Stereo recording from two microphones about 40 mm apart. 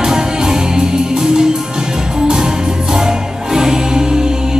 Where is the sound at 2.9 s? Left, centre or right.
Centre.